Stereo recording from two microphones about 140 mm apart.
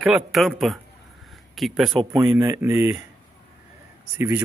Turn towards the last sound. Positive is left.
turn(degrees=-15)  # may be behind; listen again after turning